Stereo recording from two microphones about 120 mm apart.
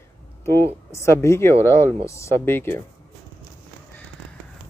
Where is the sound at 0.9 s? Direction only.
25° left (ahead or behind).